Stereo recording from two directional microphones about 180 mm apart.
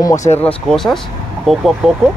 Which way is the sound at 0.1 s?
40° left (ahead or behind).